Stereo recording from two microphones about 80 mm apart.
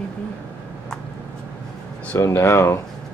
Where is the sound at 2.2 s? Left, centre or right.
Left.